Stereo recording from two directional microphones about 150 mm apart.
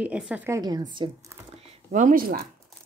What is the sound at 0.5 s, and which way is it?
Speech, 25° right (ahead or behind).